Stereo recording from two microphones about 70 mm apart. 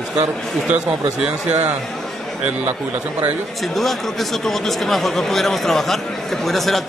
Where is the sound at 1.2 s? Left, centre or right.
Right.